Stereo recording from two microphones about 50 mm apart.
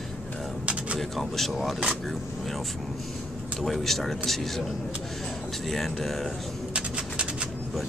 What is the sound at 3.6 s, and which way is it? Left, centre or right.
Speech, centre.